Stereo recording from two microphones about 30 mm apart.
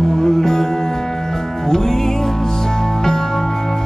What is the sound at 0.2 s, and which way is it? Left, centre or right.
Music, centre.